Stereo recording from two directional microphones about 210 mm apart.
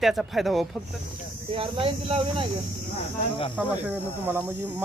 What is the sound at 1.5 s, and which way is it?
Speech, 25° right (ahead or behind).